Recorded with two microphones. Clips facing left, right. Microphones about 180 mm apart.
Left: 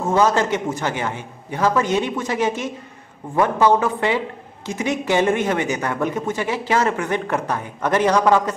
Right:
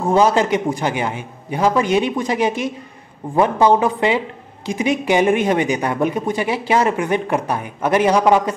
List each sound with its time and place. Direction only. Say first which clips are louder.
0.1 s speech: right 3 dB; 15° right (ahead or behind)